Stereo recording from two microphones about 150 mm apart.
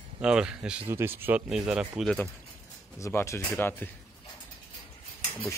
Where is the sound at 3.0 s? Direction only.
15° left (ahead or behind).